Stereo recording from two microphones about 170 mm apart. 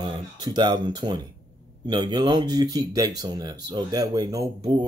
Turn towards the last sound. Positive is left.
turn(degrees=-20)  # may be behind; listen again after turning